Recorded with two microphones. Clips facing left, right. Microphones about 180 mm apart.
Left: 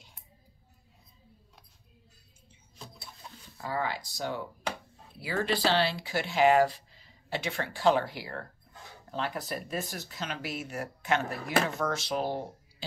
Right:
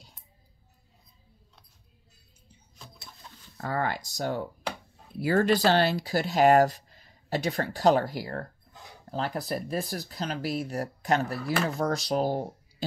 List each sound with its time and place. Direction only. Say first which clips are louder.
3.5 s speech: right 3 dB; 50° right (ahead or behind)